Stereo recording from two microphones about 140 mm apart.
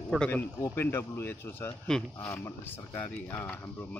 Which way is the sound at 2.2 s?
20° left (ahead or behind).